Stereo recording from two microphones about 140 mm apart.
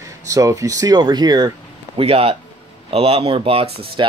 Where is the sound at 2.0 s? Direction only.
45° right (ahead or behind).